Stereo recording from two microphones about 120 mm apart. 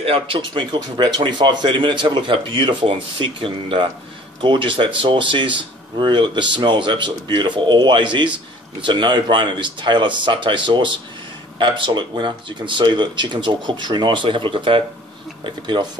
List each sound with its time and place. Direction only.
0.0 s speech: 50° right (ahead or behind)